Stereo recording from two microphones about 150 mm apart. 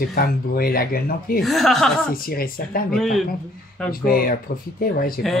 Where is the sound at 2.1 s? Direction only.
75° left (ahead or behind).